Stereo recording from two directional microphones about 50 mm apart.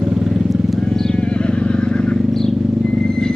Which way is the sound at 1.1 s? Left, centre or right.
Left.